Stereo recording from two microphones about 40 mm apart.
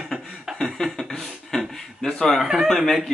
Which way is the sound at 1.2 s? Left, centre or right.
Centre.